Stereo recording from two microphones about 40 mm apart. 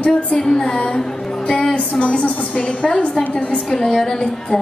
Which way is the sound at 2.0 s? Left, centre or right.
Left.